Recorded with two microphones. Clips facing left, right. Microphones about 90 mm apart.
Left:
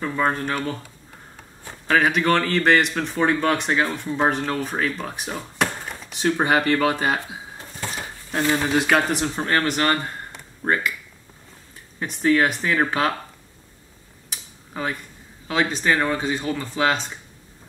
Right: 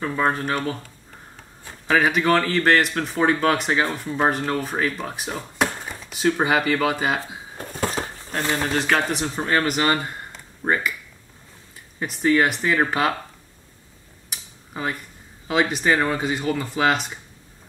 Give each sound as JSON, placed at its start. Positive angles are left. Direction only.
{"t": 0.0, "sound": "speech", "side_deg": -5}
{"t": 1.9, "sound": "speech", "side_deg": 0}
{"t": 7.5, "sound": "a sound", "side_deg": -50}
{"t": 8.3, "sound": "speech", "side_deg": 0}
{"t": 12.0, "sound": "speech", "side_deg": 0}
{"t": 14.3, "sound": "tick-tock", "side_deg": -5}
{"t": 15.4, "sound": "speech", "side_deg": -5}